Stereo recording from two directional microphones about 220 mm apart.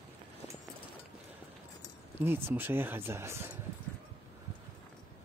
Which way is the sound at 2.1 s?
10° right (ahead or behind).